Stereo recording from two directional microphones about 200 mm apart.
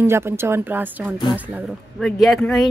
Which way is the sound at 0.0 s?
10° right (ahead or behind).